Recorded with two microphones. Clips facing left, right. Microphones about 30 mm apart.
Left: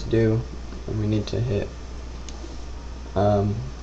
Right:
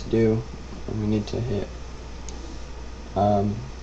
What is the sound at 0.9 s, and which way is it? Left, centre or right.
Speech, centre.